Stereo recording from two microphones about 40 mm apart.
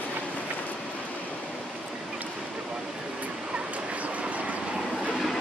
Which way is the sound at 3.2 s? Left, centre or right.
Right.